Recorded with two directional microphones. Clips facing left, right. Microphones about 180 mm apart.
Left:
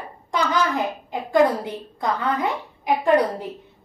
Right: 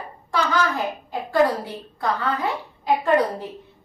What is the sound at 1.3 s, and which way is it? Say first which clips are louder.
A woman's voice: left 2 dB; 20° left (ahead or behind).